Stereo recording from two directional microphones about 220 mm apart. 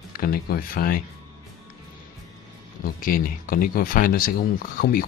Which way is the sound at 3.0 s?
40° left (ahead or behind).